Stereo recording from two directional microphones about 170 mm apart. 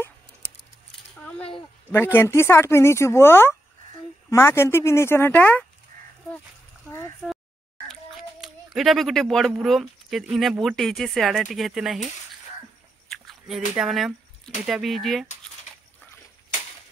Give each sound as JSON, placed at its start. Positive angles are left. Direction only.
{"t": 2.1, "sound": "speech", "side_deg": 15}
{"t": 5.9, "sound": "livestock", "side_deg": -55}
{"t": 7.2, "sound": "speech", "side_deg": 0}
{"t": 13.1, "sound": "a sound", "side_deg": 0}
{"t": 13.7, "sound": "speech", "side_deg": 0}